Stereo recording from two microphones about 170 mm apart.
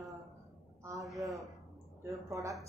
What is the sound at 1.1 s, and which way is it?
Speech, centre (ahead or behind).